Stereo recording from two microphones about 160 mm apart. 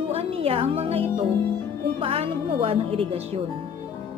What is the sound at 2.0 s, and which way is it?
Speech, 35° right (ahead or behind).